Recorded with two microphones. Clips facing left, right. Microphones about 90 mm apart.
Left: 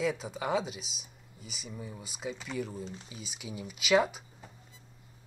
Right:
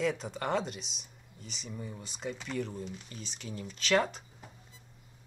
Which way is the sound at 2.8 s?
30° left (ahead or behind).